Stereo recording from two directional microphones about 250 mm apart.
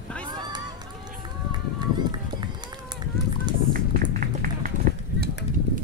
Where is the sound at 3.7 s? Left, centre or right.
Right.